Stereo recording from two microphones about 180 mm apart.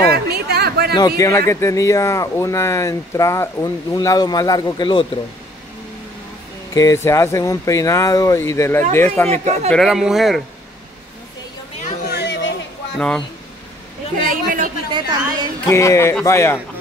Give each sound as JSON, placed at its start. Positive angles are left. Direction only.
{"t": 0.1, "sound": "chatter", "side_deg": -60}
{"t": 0.9, "sound": "speech", "side_deg": 20}
{"t": 6.7, "sound": "speech", "side_deg": 15}
{"t": 9.3, "sound": "speech", "side_deg": -35}
{"t": 9.7, "sound": "speech", "side_deg": 0}
{"t": 12.1, "sound": "a sound", "side_deg": 75}
{"t": 12.9, "sound": "speech", "side_deg": 5}
{"t": 14.2, "sound": "speech", "side_deg": -50}
{"t": 14.9, "sound": "a woman's voice", "side_deg": -25}
{"t": 15.6, "sound": "speech", "side_deg": 15}